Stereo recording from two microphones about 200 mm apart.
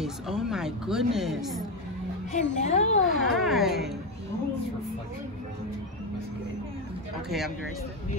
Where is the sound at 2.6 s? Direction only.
35° left (ahead or behind).